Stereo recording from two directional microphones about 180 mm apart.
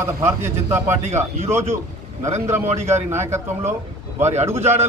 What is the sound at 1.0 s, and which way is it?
Speech, 40° right (ahead or behind).